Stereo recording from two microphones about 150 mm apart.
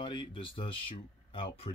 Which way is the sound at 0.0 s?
30° left (ahead or behind).